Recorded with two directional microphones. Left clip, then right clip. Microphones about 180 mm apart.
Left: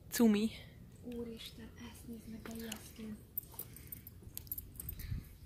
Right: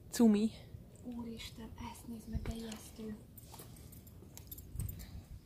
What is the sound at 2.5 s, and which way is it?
Whispering, 15° right (ahead or behind).